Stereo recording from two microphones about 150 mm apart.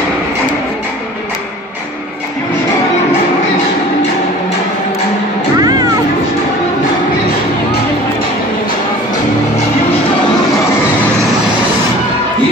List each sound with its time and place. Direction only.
5.6 s music: 25° right (ahead or behind)